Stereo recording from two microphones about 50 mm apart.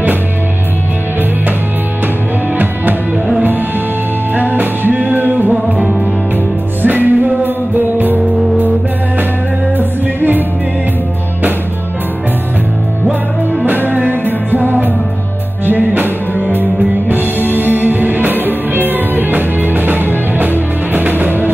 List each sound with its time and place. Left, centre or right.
2.5 s music: right
4.4 s music: right
5.8 s music: centre
6.8 s music: right
9.8 s music: right
13.7 s music: right